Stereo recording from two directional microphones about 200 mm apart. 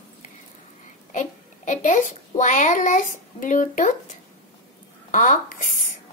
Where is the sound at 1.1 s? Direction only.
40° left (ahead or behind).